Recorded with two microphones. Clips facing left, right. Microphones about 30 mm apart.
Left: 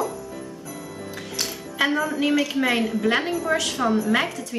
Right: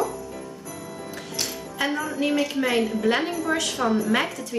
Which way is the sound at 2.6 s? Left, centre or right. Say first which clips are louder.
Left 1 dB; centre.